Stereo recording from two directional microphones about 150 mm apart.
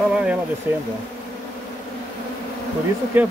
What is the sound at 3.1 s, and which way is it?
Speech, 10° right (ahead or behind).